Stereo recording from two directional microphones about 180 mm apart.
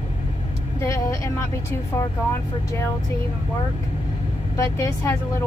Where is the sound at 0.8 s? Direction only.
15° left (ahead or behind).